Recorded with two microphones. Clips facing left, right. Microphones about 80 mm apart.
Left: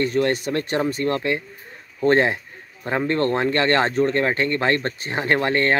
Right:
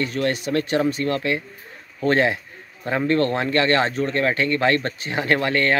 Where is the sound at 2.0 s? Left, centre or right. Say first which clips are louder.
Left 1 dB; left.